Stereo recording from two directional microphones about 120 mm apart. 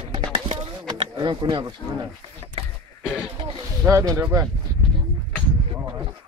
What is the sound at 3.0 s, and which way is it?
Speech, 5° right (ahead or behind).